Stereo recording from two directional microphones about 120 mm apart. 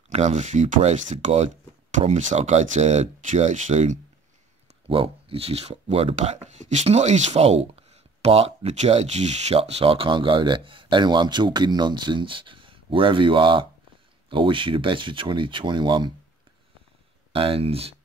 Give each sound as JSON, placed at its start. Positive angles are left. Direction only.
{"t": 0.1, "sound": "speech", "side_deg": -70}
{"t": 4.8, "sound": "speech", "side_deg": -50}
{"t": 6.1, "sound": "speech", "side_deg": -75}
{"t": 17.3, "sound": "speech", "side_deg": -50}